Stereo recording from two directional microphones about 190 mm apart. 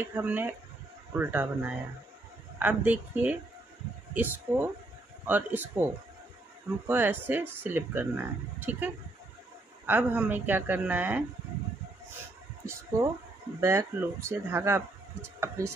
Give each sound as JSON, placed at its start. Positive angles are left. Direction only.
{"t": 0.0, "sound": "speech", "side_deg": -10}
{"t": 6.9, "sound": "speech", "side_deg": -10}
{"t": 13.6, "sound": "speech", "side_deg": -15}